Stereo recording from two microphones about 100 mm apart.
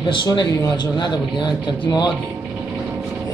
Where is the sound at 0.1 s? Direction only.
50° left (ahead or behind).